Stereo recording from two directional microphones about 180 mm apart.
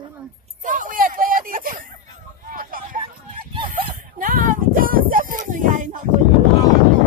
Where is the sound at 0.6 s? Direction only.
45° right (ahead or behind).